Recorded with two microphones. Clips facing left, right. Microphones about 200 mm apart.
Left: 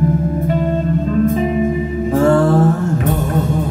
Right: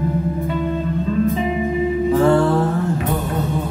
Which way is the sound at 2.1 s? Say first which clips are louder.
Left 3 dB; 45° left (ahead or behind).